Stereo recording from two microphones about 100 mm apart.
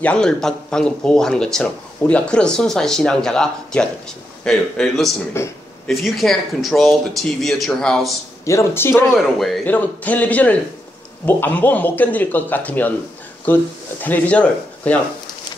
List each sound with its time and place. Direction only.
0.0 s speech: 10° left (ahead or behind)
5.4 s speech: 25° left (ahead or behind)
5.9 s speech: centre (ahead or behind)
8.5 s speech: 25° left (ahead or behind)
9.2 s speech: centre (ahead or behind)
9.7 s speech: 15° left (ahead or behind)
14.0 s speech: 15° left (ahead or behind)